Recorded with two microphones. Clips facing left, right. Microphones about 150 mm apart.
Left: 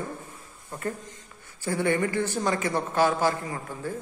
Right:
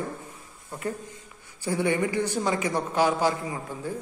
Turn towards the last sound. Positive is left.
turn(degrees=-15)  # may be behind; listen again after turning